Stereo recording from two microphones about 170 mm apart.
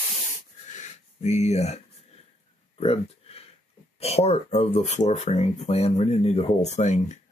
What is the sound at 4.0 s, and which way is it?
Speech, 35° left (ahead or behind).